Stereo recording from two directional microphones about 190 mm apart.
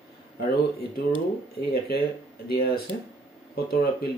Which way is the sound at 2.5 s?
55° left (ahead or behind).